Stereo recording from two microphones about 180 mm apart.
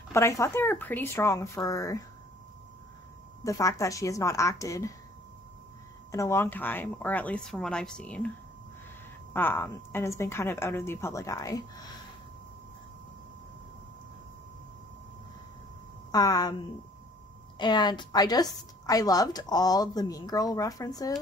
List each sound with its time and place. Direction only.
0.1 s a woman's voice: 15° left (ahead or behind)
3.4 s a woman's voice: 15° left (ahead or behind)
6.1 s a woman's voice: 15° left (ahead or behind)
9.3 s a woman's voice: 10° left (ahead or behind)
16.1 s a woman's voice: 20° left (ahead or behind)
17.6 s a woman's voice: 25° left (ahead or behind)